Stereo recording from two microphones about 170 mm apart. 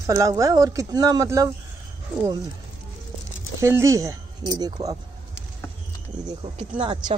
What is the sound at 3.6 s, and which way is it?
Speech, 15° right (ahead or behind).